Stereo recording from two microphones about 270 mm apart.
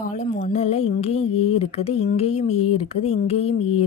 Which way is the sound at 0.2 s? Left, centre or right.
Left.